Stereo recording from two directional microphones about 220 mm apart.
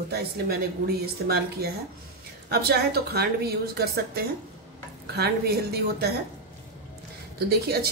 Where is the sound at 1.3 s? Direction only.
45° right (ahead or behind).